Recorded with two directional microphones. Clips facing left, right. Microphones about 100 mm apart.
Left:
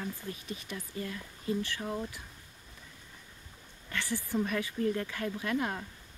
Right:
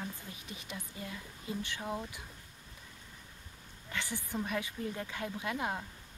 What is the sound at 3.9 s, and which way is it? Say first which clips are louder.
Speech: left 5 dB; 20° right (ahead or behind).